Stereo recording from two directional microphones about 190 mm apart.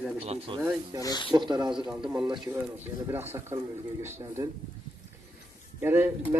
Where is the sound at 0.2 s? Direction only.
30° right (ahead or behind).